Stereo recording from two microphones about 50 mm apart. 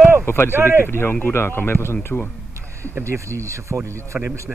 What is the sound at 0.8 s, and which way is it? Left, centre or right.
Speech, left.